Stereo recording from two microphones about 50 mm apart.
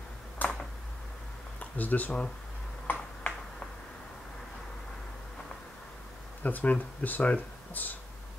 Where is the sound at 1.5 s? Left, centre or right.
Left.